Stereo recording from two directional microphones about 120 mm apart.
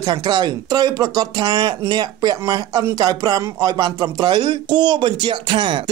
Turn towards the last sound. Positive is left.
turn(degrees=-40)  # may be behind; listen again after turning